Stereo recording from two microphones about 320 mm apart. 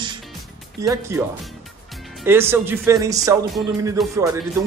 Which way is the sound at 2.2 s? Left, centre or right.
Centre.